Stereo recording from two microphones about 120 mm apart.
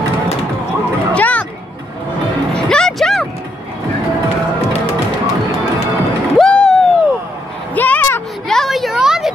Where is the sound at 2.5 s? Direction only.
5° left (ahead or behind).